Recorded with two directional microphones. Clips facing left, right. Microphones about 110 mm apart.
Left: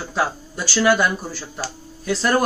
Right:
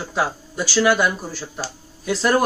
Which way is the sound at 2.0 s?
10° right (ahead or behind).